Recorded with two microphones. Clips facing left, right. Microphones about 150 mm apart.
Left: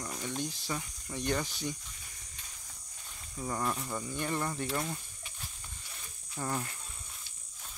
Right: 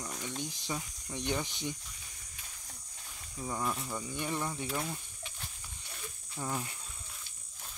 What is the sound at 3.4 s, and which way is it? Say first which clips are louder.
Speech: left 1 dB; centre (ahead or behind).